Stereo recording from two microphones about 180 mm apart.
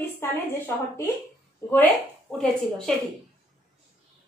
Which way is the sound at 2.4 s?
5° left (ahead or behind).